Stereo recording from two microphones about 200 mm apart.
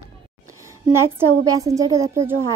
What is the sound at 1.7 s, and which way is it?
Speech, 15° right (ahead or behind).